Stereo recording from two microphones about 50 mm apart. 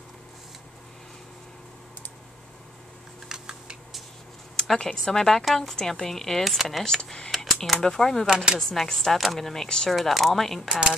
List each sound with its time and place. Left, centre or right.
3.3 s typing: centre
4.6 s speech: centre
6.8 s speech: centre
7.2 s a sound: centre
7.8 s speech: centre
10.7 s speech: centre